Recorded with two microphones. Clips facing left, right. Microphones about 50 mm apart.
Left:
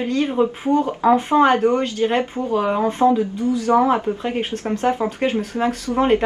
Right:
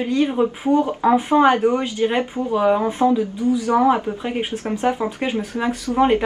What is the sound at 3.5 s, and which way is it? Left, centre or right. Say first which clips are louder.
Speech: left 1 dB; centre.